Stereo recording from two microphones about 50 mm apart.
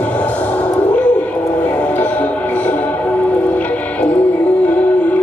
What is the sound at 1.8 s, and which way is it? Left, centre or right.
Music, left.